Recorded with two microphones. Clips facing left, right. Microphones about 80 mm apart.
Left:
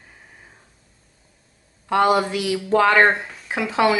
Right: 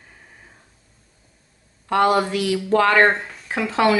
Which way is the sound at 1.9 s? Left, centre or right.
Centre.